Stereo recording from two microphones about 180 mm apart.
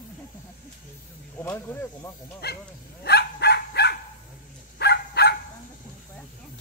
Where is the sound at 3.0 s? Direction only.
65° left (ahead or behind).